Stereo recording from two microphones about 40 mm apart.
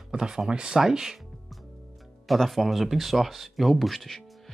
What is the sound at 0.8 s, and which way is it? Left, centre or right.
Speech, centre.